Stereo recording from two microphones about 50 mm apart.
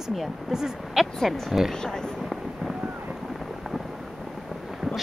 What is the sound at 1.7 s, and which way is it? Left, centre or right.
Speech, centre.